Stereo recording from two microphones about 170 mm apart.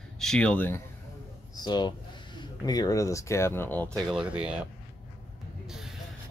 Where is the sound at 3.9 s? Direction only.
5° right (ahead or behind).